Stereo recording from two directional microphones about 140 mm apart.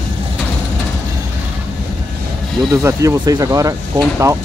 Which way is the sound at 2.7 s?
20° right (ahead or behind).